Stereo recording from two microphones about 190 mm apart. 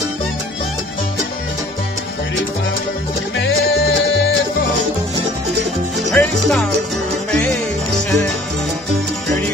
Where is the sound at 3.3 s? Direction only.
60° left (ahead or behind).